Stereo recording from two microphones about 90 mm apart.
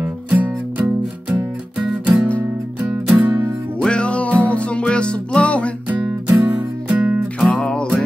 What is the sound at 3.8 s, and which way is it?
Music, 10° left (ahead or behind).